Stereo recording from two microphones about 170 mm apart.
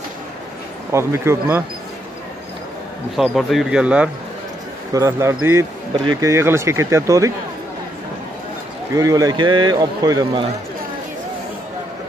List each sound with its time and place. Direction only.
0.9 s speech: 15° right (ahead or behind)
3.2 s speech: centre (ahead or behind)
4.9 s speech: 15° right (ahead or behind)
8.9 s a man's voice: 20° right (ahead or behind)